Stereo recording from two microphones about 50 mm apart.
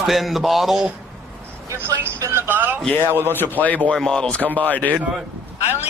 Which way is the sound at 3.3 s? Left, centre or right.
Left.